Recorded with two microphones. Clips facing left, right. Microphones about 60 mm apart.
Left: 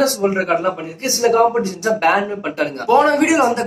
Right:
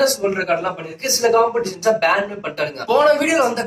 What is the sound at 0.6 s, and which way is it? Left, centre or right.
Speech, right.